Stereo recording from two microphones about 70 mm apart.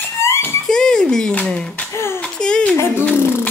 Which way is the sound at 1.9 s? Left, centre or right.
Left.